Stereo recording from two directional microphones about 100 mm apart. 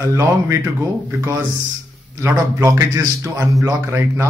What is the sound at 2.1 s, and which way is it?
A man's voice, 30° right (ahead or behind).